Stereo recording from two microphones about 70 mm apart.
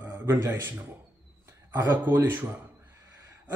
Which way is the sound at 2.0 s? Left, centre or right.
Right.